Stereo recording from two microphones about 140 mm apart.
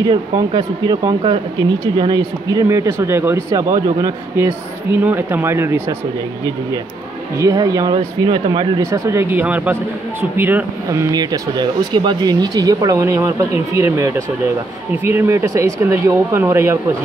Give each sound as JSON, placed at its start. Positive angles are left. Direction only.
{"t": 0.1, "sound": "speech", "side_deg": -35}
{"t": 2.0, "sound": "speech", "side_deg": -30}
{"t": 7.3, "sound": "speech", "side_deg": -25}
{"t": 7.9, "sound": "speech", "side_deg": -35}